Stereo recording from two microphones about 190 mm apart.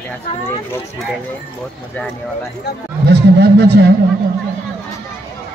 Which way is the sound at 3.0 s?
60° right (ahead or behind).